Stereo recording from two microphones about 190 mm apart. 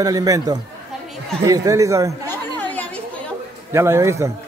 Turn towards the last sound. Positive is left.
turn(degrees=-15)  # may be behind; listen again after turning